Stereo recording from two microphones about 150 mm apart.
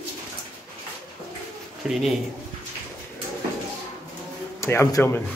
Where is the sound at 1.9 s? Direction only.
5° right (ahead or behind).